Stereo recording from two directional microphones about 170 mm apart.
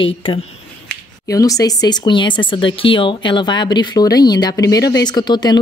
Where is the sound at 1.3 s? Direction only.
20° left (ahead or behind).